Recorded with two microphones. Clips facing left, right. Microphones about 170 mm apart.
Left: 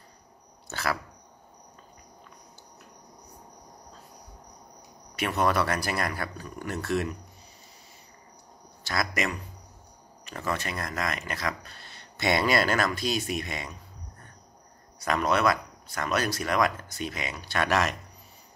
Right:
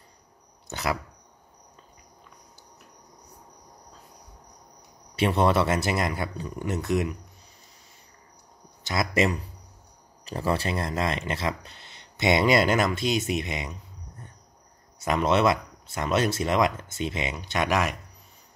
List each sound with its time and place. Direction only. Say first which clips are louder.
0.7 s dog: right 2 dB; 20° right (ahead or behind)
5.1 s speech: right 4 dB; 30° right (ahead or behind)
8.8 s speech: right 5 dB; 25° right (ahead or behind)